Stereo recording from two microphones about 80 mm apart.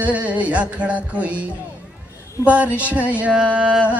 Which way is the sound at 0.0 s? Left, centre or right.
Centre.